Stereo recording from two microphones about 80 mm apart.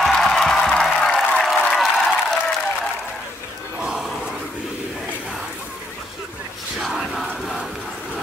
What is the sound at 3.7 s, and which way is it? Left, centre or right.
Battle cry, centre.